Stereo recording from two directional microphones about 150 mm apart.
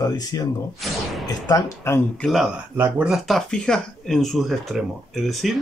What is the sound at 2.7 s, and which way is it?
Speech, 15° right (ahead or behind).